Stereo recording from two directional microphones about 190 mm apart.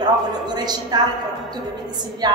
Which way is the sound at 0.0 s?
20° right (ahead or behind).